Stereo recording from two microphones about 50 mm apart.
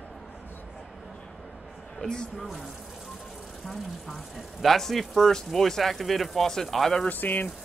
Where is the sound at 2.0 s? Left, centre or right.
Centre.